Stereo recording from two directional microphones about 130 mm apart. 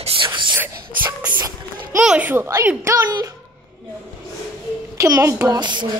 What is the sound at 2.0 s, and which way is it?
A child's voice, 10° right (ahead or behind).